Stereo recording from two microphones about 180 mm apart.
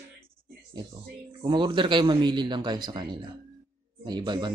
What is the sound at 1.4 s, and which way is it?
Speech, 25° right (ahead or behind).